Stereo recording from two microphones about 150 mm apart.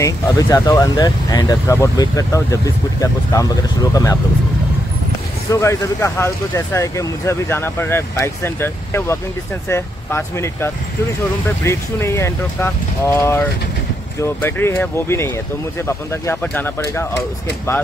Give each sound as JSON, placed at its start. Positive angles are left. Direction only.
{"t": 0.0, "sound": "speech", "side_deg": 25}
{"t": 5.5, "sound": "speech", "side_deg": 20}